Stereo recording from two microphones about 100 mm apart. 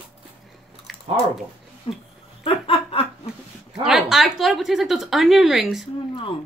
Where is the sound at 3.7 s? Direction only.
5° right (ahead or behind).